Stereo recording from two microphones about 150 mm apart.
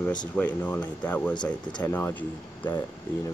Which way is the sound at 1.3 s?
30° left (ahead or behind).